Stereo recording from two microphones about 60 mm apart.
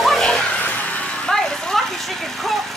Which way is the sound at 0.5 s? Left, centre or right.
Left.